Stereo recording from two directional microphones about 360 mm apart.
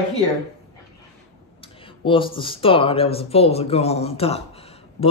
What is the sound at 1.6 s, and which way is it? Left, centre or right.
Speech, centre.